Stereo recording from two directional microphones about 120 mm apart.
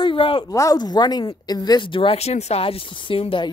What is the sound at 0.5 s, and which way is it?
Speech, 30° left (ahead or behind).